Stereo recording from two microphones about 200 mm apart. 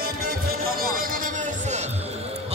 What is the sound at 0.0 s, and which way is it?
Music, 45° right (ahead or behind).